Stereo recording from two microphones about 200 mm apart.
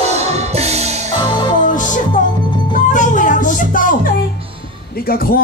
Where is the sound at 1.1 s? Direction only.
25° left (ahead or behind).